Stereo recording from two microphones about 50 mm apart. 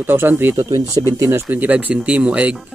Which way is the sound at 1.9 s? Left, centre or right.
Right.